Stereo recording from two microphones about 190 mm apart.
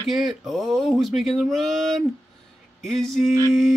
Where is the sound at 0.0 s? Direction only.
Centre (ahead or behind).